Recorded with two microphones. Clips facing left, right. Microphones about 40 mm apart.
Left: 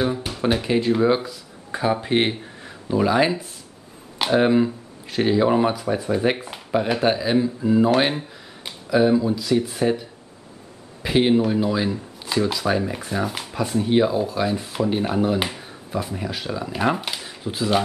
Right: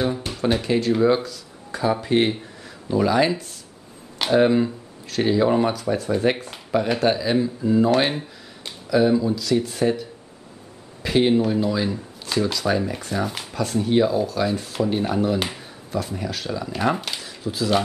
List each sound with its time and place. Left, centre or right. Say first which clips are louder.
0.0 s speech: left 1 dB; centre; by 3.0 s left
3.0 s speech: even; centre
17.2 s a sound: even; left